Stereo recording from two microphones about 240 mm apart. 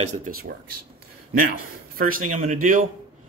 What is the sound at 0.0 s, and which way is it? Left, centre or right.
Speech, right.